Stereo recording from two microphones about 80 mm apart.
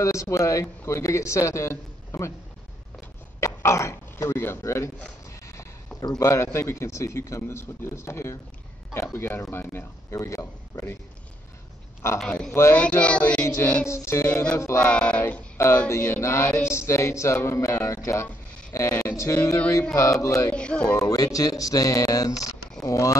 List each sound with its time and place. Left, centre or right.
0.0 s speech: left
3.3 s cough: left
4.6 s speech: left
5.9 s speech: left
6.2 s speech: left
12.3 s speech: centre
13.8 s speech: left
14.8 s speech: centre
16.1 s speech: left
20.5 s speech: centre
21.1 s speech: left